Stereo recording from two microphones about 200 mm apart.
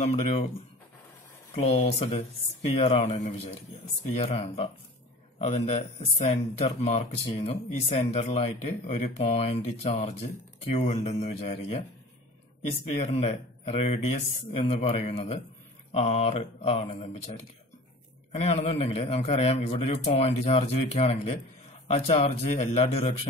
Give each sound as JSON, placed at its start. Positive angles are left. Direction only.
{"t": 0.0, "sound": "speech", "side_deg": 35}
{"t": 1.5, "sound": "speech", "side_deg": 35}